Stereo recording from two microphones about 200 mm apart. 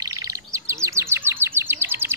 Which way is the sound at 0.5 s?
15° right (ahead or behind).